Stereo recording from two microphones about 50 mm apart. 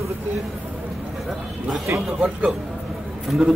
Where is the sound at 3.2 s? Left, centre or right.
Centre.